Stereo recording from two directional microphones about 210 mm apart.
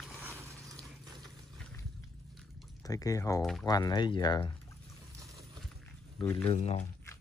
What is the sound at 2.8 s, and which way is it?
Speech, 15° left (ahead or behind).